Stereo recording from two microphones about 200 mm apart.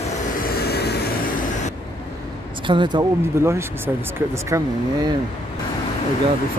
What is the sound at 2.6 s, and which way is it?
Speech, 25° right (ahead or behind).